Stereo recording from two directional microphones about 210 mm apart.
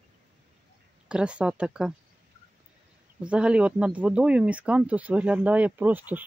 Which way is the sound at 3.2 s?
5° right (ahead or behind).